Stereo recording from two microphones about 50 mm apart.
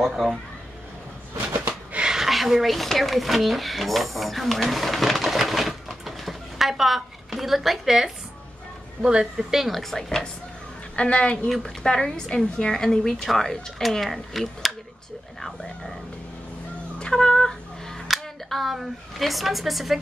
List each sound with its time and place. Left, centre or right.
0.0 s speech: centre
2.0 s speech: centre
11.0 s a woman's voice: left
11.4 s a woman's voice: centre
17.0 s a sound: centre
18.0 s speech: centre